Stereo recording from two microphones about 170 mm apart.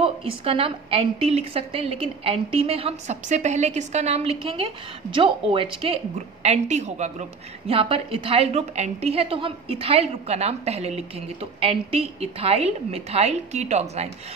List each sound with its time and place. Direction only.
0.4 s a woman's voice: 30° right (ahead or behind)